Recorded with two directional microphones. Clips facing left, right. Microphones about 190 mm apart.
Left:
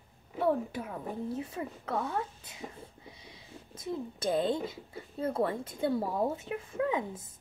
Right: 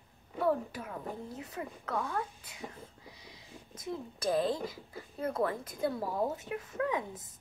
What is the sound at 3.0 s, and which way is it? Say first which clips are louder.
Speech: left 2 dB; 25° left (ahead or behind).